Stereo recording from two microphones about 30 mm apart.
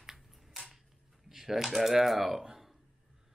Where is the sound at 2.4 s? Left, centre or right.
Centre.